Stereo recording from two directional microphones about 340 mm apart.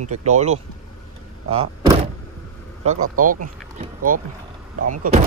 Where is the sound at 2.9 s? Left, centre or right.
Right.